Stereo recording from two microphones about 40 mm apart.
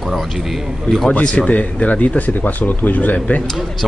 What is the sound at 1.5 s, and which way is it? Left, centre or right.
Speech, left.